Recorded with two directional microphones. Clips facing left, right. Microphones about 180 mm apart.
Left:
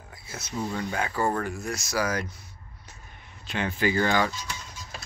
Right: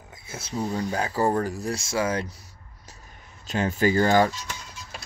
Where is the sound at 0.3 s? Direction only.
30° right (ahead or behind).